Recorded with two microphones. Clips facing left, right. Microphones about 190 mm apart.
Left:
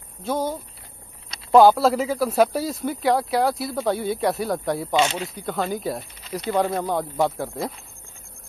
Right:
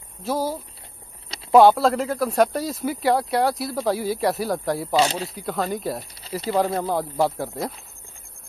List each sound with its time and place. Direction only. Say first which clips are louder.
0.2 s speech: even; 5° right (ahead or behind)
4.9 s speech: right 1 dB; 35° right (ahead or behind)
5.2 s speech: even; centre (ahead or behind)